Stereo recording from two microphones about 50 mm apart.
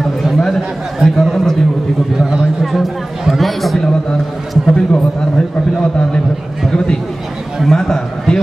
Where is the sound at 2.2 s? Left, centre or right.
Centre.